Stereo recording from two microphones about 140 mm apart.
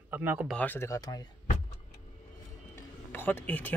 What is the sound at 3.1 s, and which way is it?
Speech, 15° left (ahead or behind).